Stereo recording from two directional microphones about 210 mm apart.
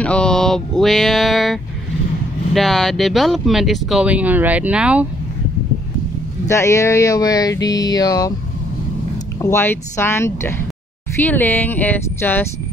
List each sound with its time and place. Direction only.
0.0 s speech: 5° left (ahead or behind)
6.4 s speech: 15° left (ahead or behind)
9.4 s speech: 10° left (ahead or behind)